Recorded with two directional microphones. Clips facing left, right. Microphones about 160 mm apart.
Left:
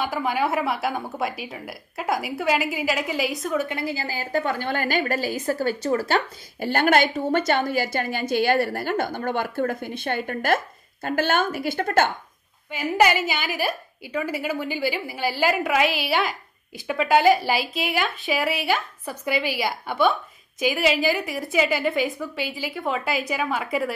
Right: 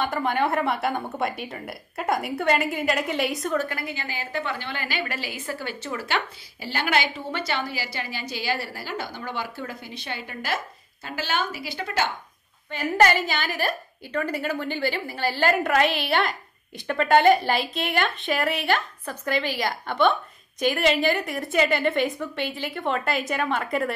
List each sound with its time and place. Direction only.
0.0 s a woman's voice: 5° left (ahead or behind)
3.5 s a woman's voice: 20° left (ahead or behind); by 12.1 s 50° left (ahead or behind)
12.7 s a woman's voice: 10° left (ahead or behind)